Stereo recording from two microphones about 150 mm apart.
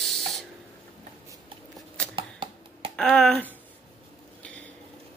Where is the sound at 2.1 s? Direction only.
35° right (ahead or behind).